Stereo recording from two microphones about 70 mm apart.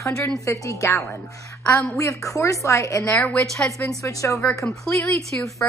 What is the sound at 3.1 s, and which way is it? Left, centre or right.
Speech, left.